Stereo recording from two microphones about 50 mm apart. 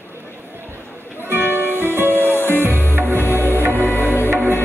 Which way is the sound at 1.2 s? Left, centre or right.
Right.